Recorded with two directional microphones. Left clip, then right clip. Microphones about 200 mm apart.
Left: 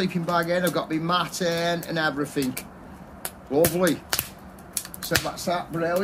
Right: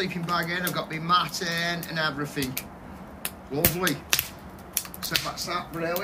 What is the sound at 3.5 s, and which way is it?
Speech, 60° left (ahead or behind).